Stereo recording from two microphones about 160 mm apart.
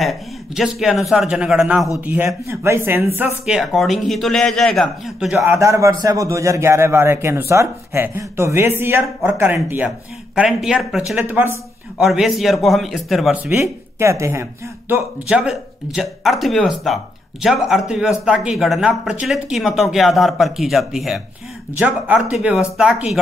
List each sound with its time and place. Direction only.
0.0 s a man's voice: centre (ahead or behind)
3.4 s speech: centre (ahead or behind)
5.4 s a man's voice: 15° right (ahead or behind)
12.0 s speech: centre (ahead or behind)
13.6 s speech: 15° right (ahead or behind)
15.2 s a man's voice: 5° right (ahead or behind)